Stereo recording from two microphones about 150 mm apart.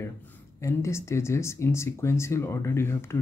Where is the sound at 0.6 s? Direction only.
20° left (ahead or behind).